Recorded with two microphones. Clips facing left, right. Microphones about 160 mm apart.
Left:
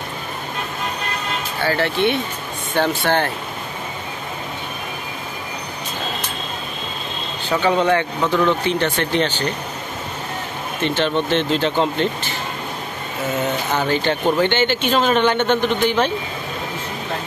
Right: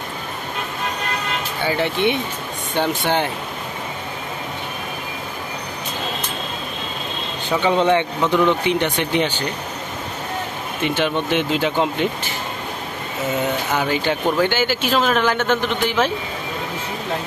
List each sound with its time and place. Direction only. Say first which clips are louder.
1.6 s speech: left 1 dB; 15° right (ahead or behind)
7.4 s speech: even; 20° right (ahead or behind)
10.8 s speech: left 1 dB; 10° right (ahead or behind)
13.7 s speech: left 2 dB; 10° right (ahead or behind)